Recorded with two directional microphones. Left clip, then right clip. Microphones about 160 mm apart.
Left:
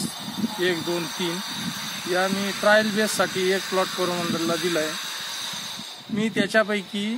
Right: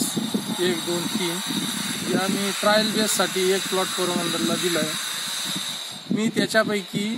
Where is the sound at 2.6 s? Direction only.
10° left (ahead or behind).